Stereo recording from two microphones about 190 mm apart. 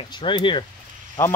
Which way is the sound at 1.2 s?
10° left (ahead or behind).